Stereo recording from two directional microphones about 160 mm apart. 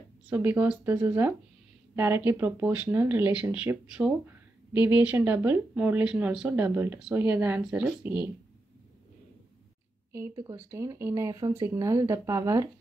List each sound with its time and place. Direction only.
0.3 s speech: 10° right (ahead or behind)
10.1 s speech: 20° right (ahead or behind)